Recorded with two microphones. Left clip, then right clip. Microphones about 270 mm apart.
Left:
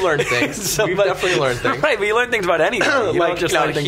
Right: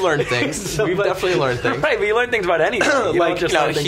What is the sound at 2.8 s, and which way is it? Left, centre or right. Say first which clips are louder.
Speech: even; right.